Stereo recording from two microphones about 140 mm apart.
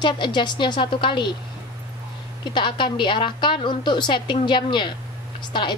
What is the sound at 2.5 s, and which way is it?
A woman's voice, 35° left (ahead or behind).